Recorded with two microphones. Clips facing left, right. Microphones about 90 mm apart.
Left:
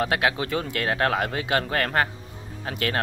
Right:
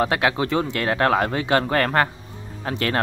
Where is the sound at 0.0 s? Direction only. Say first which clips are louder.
Right 3 dB; 30° right (ahead or behind).